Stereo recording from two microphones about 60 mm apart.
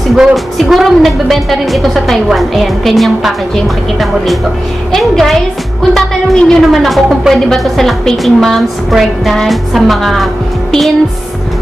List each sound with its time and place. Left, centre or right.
0.1 s a woman's voice: centre